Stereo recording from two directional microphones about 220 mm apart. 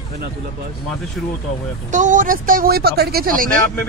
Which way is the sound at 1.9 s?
35° right (ahead or behind).